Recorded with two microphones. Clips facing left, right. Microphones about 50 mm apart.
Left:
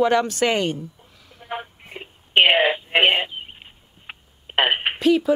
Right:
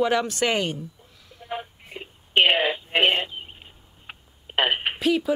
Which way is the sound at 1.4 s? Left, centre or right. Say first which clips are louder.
Left 2 dB; left.